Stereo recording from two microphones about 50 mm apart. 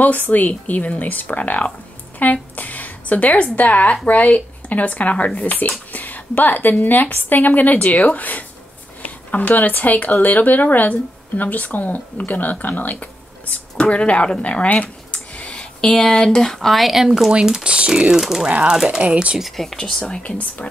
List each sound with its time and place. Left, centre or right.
0.0 s a woman's voice: left; by 17.3 s centre
17.3 s speech: centre
18.1 s speech: centre
18.5 s speech: centre
19.5 s speech: centre
19.8 s speech: centre
20.2 s speech: left